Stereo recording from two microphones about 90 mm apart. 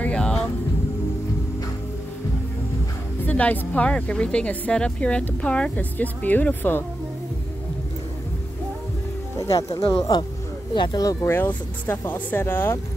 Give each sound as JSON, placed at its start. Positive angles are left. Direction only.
{"t": 0.0, "sound": "music", "side_deg": 10}
{"t": 3.3, "sound": "speech", "side_deg": 15}
{"t": 9.4, "sound": "speech", "side_deg": 40}
{"t": 9.8, "sound": "speech", "side_deg": 85}
{"t": 10.7, "sound": "speech", "side_deg": 55}
{"t": 11.2, "sound": "speech", "side_deg": 25}